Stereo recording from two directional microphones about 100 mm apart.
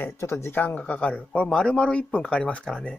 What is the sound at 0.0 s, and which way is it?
Speech, 30° left (ahead or behind).